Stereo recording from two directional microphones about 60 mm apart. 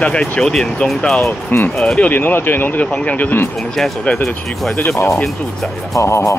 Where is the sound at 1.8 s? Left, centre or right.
Centre.